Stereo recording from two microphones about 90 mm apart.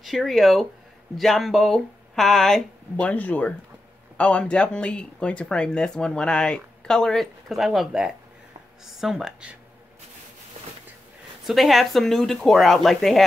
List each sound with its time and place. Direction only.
0.0 s speech: centre (ahead or behind)
3.1 s speech: 15° left (ahead or behind); by 9.6 s 10° right (ahead or behind)
11.4 s speech: centre (ahead or behind)